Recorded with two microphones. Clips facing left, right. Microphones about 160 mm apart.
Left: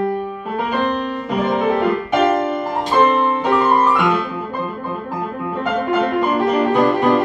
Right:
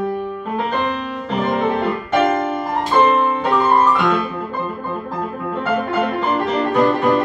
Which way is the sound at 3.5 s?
5° left (ahead or behind).